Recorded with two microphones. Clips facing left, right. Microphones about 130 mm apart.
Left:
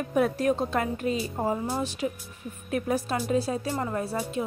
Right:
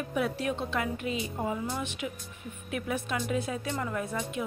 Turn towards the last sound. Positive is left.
turn(degrees=35)  # may be behind; listen again after turning